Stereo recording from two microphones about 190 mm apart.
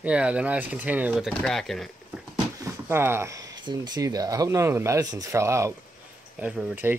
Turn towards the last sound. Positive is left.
turn(degrees=-10)  # may be behind; listen again after turning